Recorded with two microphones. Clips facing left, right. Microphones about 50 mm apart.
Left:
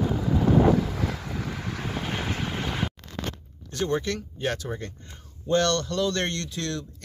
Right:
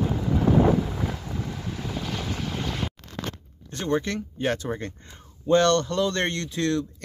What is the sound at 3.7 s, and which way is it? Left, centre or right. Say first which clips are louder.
A man's voice: right 1 dB; right.